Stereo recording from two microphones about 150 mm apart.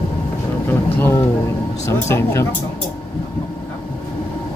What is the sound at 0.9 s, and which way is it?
Speech, 15° left (ahead or behind).